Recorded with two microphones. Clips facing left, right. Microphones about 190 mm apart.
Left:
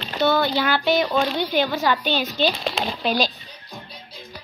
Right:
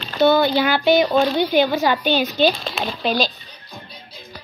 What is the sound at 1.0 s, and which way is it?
A woman's voice, 10° right (ahead or behind).